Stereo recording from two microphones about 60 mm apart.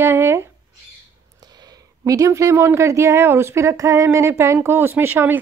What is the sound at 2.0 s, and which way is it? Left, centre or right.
Speech, right.